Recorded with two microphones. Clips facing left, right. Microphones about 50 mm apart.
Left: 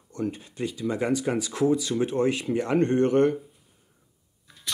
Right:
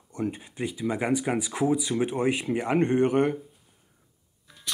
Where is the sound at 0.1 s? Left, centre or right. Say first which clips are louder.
Even; centre.